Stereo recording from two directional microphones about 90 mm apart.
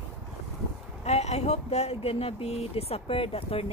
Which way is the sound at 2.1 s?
90° left.